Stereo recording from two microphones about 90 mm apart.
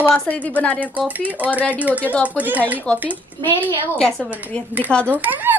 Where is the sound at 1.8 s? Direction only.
15° right (ahead or behind).